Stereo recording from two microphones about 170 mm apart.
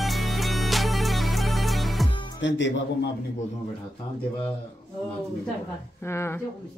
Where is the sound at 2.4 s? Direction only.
90° left.